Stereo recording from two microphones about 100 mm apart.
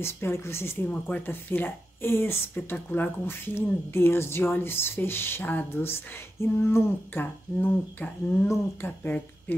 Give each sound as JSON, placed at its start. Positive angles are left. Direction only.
{"t": 0.0, "sound": "speech", "side_deg": 25}